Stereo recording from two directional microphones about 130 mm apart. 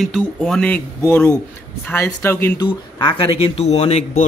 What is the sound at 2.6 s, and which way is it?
Speech, 35° left (ahead or behind).